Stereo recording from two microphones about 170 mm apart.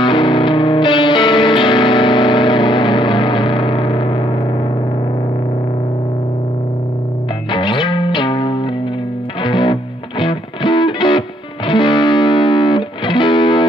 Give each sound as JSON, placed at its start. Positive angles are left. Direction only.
{"t": 0.0, "sound": "music", "side_deg": 30}
{"t": 7.5, "sound": "music", "side_deg": 30}